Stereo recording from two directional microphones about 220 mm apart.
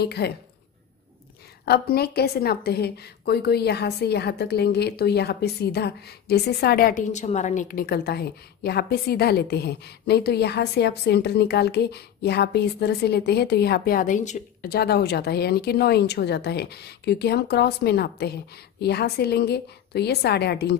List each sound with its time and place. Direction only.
0.0 s a woman's voice: 45° left (ahead or behind)
1.7 s a woman's voice: 45° left (ahead or behind)